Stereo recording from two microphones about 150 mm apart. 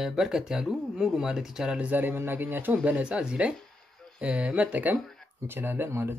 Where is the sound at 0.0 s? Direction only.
Centre (ahead or behind).